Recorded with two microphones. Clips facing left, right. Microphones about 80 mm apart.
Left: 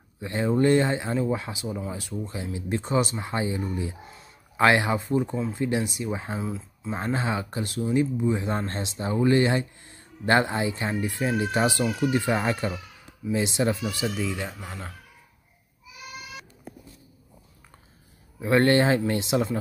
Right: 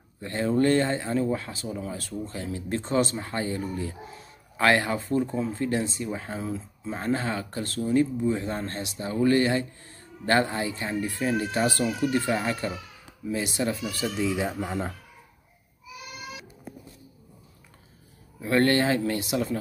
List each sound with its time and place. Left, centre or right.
0.2 s speech: centre
3.2 s speech: centre
4.1 s a sound: centre
4.6 s speech: centre
6.4 s speech: centre
7.2 s speech: centre
8.5 s speech: left
11.8 s speech: centre
12.1 s speech: centre
14.6 s speech: right
18.4 s speech: left